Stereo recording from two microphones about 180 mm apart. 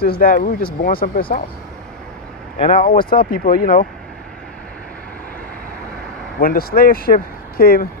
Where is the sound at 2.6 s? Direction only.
30° left (ahead or behind).